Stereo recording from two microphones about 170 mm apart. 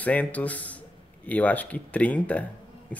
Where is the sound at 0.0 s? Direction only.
10° left (ahead or behind).